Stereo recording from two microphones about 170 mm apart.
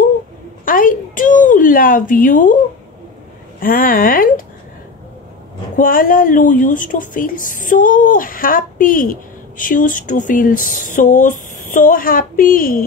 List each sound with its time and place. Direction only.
0.7 s a sound: 55° left (ahead or behind)
3.5 s speech: 55° left (ahead or behind)
5.8 s speech: 55° left (ahead or behind)